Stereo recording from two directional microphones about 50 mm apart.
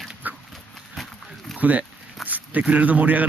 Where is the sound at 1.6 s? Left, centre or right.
Right.